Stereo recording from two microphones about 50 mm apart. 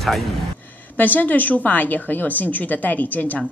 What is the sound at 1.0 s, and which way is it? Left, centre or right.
A woman's voice, left.